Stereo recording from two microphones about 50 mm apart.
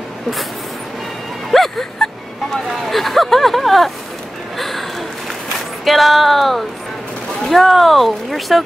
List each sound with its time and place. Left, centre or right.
1.5 s a sound: centre
2.5 s speech: centre
4.6 s gasp: centre
5.9 s speech: centre